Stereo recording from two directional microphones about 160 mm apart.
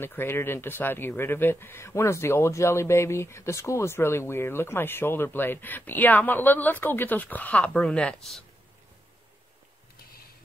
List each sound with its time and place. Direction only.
0.0 s speech: 15° left (ahead or behind)